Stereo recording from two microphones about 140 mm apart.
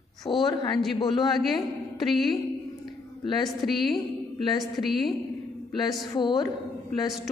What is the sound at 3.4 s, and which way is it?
A woman's voice, centre (ahead or behind).